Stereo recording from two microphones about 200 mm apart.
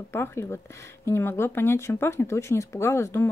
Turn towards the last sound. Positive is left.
turn(degrees=15)  # may be behind; listen again after turning